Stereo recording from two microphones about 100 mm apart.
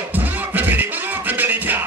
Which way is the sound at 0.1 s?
20° right (ahead or behind).